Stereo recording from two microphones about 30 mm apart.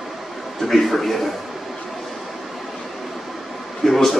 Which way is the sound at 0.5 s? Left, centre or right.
Centre.